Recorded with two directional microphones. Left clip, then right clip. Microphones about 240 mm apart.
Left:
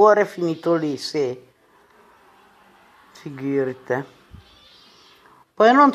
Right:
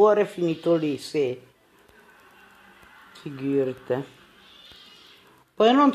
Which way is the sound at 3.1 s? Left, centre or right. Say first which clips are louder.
Left 2 dB; left.